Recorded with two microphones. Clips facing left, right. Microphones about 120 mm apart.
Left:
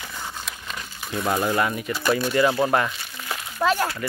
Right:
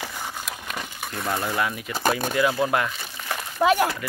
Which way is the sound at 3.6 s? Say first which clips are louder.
Right 2 dB; 15° right (ahead or behind).